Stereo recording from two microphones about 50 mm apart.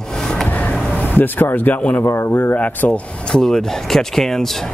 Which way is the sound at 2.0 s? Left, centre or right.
Left.